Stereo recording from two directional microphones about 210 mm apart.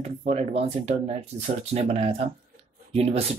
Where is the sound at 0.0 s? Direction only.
30° right (ahead or behind).